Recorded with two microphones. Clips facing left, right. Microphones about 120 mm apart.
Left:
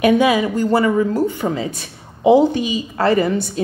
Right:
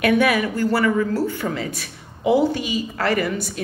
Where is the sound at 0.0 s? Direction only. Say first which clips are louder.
Left 4 dB; 20° left (ahead or behind).